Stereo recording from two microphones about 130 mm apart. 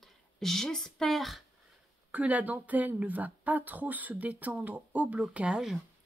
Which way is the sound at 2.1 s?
10° right (ahead or behind).